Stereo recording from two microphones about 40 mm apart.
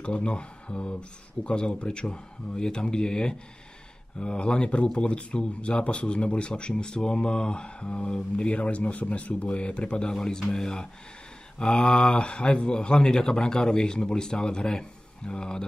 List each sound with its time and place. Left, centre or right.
0.0 s speech: left